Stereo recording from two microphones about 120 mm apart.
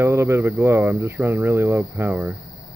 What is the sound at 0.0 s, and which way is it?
Speech, 20° right (ahead or behind).